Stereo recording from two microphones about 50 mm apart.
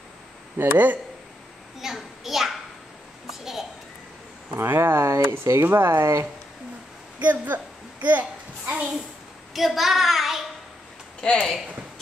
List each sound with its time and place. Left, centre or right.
0.6 s speech: right
1.8 s a sound: centre
4.6 s speech: right
7.2 s a child's voice: right
9.5 s child singing: centre
11.1 s speech: centre